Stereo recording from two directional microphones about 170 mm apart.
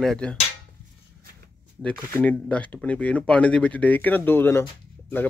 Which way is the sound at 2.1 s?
10° left (ahead or behind).